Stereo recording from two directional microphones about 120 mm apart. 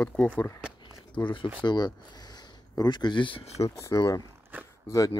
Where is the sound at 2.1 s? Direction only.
35° left (ahead or behind).